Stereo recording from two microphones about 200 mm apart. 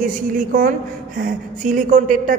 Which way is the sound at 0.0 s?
40° right (ahead or behind).